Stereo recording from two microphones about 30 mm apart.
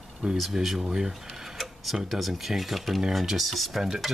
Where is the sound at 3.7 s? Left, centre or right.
Centre.